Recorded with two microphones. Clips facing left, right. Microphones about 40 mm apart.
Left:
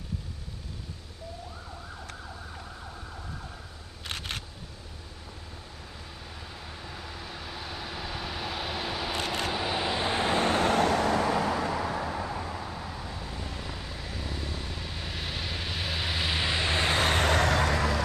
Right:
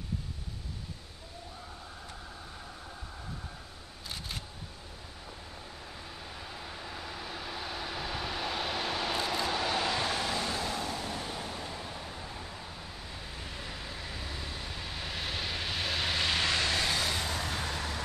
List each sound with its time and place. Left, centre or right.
4.0 s single-lens reflex camera: left
6.5 s vehicle: centre
9.1 s vehicle: left
9.5 s vehicle: centre
10.1 s vehicle: left
12.4 s vehicle: left
13.0 s vehicle: centre
16.7 s a sound: left